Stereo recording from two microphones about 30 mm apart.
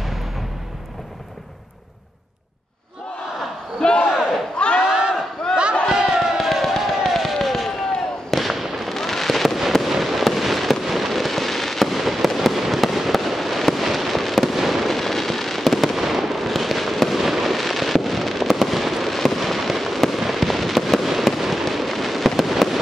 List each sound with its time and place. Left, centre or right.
3.8 s battle cry: left
4.8 s a sound: right
5.9 s crowd: centre
6.3 s music: centre
7.4 s fireworks: centre
14.9 s fireworks: centre
16.0 s fireworks: centre